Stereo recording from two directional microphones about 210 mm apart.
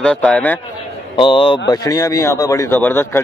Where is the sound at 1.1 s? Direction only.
25° left (ahead or behind).